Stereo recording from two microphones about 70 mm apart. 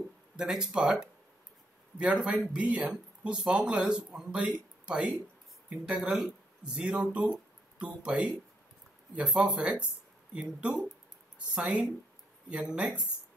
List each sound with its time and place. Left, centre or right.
0.4 s speech: centre
2.0 s speech: centre